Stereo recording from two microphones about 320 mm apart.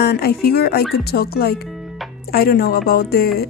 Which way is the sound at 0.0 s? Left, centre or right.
Left.